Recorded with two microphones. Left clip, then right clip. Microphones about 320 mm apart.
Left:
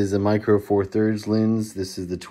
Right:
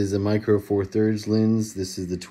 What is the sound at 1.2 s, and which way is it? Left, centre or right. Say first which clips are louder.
Speech: even; left.